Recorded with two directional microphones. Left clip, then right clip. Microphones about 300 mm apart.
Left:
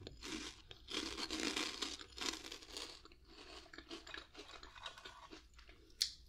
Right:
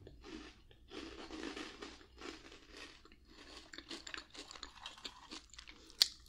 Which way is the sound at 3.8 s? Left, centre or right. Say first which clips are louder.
Right 4 dB; centre.